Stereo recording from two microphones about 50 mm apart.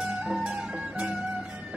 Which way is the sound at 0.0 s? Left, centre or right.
Centre.